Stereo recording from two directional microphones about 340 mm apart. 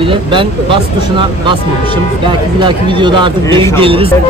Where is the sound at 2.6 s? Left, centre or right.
Centre.